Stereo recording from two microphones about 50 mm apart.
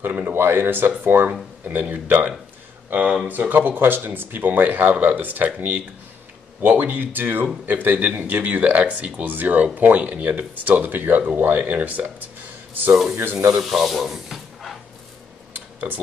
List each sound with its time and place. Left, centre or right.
0.1 s speech: right
0.4 s speech: right
3.3 s speech: right
13.1 s speech: right
13.6 s speech: centre
15.5 s a sound: right